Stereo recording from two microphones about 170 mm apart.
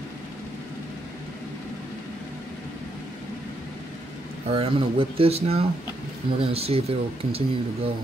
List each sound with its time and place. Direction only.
4.5 s speech: 35° right (ahead or behind)